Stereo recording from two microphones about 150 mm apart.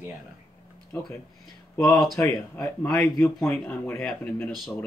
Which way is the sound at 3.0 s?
Centre (ahead or behind).